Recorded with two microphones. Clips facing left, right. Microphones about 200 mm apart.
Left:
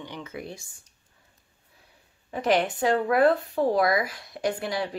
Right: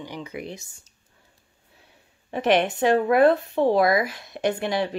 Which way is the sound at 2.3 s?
20° right (ahead or behind).